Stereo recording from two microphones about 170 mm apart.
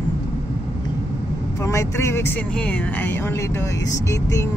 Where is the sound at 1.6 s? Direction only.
15° left (ahead or behind).